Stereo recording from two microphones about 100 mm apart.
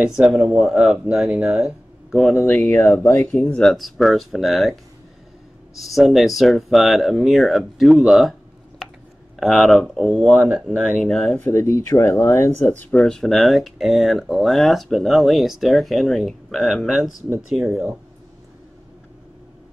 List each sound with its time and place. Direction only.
0.0 s speech: 5° right (ahead or behind)
2.4 s speech: 15° left (ahead or behind)
3.6 s speech: centre (ahead or behind)
5.8 s speech: centre (ahead or behind)
9.4 s speech: centre (ahead or behind)
11.4 s speech: 25° left (ahead or behind); by 17.8 s 5° right (ahead or behind)